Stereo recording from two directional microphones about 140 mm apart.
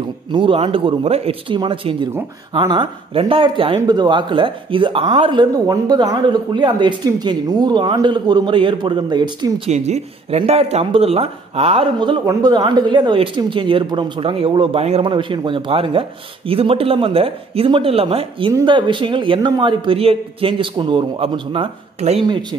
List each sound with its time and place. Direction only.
0.3 s speech: 35° right (ahead or behind)
9.7 s speech: 50° right (ahead or behind)
12.3 s speech: 25° right (ahead or behind)